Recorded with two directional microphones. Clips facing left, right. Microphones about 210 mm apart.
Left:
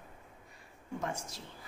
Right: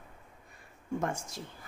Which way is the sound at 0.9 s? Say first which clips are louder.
Right 4 dB; 50° right (ahead or behind).